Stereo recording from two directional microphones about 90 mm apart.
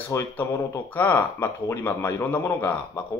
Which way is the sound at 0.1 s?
30° left (ahead or behind).